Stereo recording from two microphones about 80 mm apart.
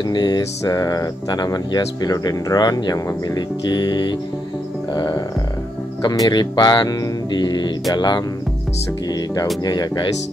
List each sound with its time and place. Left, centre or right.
0.1 s speech: left
0.4 s speech: left